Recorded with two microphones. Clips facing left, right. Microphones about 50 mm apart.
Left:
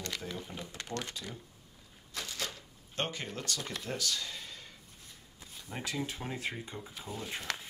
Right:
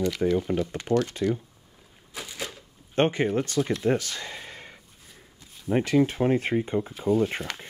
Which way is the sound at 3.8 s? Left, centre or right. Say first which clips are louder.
Right 11 dB; right.